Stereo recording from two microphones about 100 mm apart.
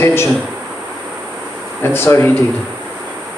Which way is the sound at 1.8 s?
20° left (ahead or behind).